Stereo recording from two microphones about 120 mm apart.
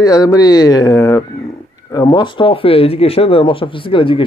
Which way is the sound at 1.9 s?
35° left (ahead or behind).